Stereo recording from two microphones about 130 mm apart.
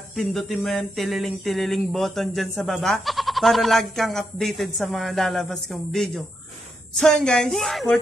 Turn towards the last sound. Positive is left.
turn(degrees=0)  # may be behind; listen again after turning